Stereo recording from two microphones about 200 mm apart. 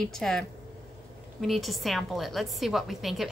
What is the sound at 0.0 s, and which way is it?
A woman's voice, centre (ahead or behind).